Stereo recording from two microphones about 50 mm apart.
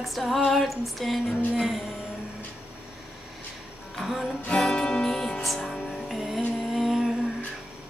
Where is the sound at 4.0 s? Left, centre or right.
Centre.